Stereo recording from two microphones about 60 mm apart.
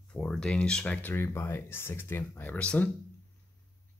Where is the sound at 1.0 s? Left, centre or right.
Left.